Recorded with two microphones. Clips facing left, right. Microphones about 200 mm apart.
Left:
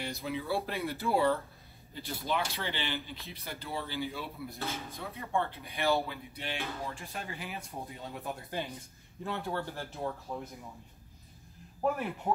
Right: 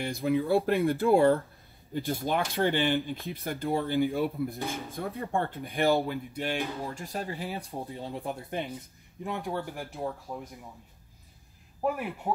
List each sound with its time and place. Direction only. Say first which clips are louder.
0.0 s speech: right 9 dB; 50° right (ahead or behind); by 8.6 s 25° right (ahead or behind)
9.2 s speech: right 2 dB; 15° right (ahead or behind)
11.8 s speech: right 1 dB; 5° right (ahead or behind)